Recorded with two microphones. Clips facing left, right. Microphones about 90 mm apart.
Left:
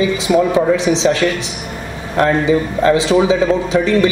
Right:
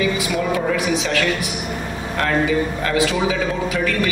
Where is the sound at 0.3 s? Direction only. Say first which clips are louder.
Left 8 dB; 25° left (ahead or behind).